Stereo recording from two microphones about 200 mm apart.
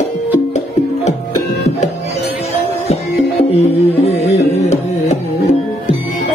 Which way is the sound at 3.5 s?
30° left (ahead or behind).